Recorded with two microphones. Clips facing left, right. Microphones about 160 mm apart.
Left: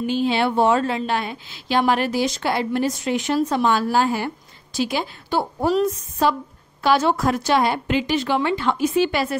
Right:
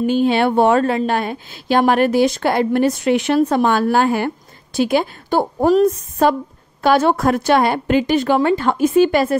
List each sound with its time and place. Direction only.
0.0 s a woman's voice: 50° right (ahead or behind)